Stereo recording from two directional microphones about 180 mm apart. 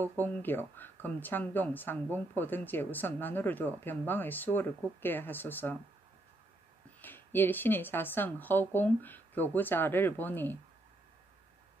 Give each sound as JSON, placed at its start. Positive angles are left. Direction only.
{"t": 0.0, "sound": "speech", "side_deg": 10}
{"t": 7.0, "sound": "speech", "side_deg": 10}